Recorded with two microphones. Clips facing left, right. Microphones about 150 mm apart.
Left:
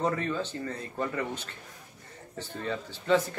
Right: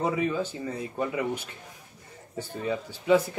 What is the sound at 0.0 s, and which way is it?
Speech, 10° right (ahead or behind).